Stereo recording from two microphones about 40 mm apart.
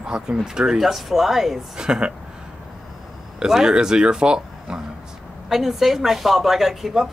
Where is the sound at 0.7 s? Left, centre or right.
Centre.